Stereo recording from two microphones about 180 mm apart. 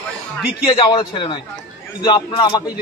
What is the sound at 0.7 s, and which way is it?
A man's voice, 30° left (ahead or behind).